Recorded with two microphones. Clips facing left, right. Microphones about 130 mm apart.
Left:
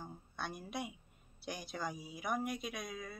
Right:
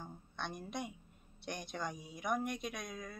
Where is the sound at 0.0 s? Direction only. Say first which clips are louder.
Even; 5° left (ahead or behind).